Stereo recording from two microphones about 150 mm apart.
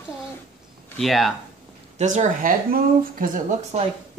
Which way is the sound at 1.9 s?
55° right (ahead or behind).